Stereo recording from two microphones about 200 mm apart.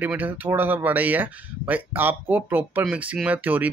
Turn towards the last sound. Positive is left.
turn(degrees=-10)  # may be behind; listen again after turning